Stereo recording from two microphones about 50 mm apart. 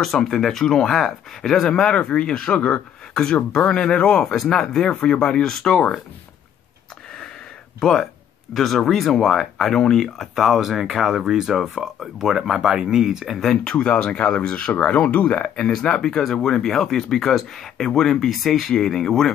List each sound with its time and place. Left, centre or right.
0.0 s speech: centre; by 2.8 s left
3.8 s speech: centre
7.8 s speech: centre
13.5 s speech: centre